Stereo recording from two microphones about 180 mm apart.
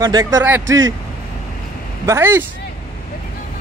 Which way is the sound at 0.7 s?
90° right.